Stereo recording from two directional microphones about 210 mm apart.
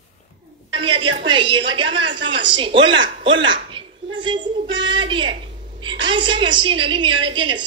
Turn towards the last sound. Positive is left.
turn(degrees=-20)  # may be behind; listen again after turning